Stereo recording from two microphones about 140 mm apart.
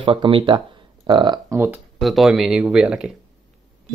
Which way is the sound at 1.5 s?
15° right (ahead or behind).